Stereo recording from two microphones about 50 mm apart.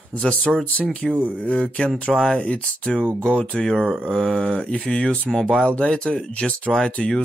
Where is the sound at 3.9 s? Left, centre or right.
Centre.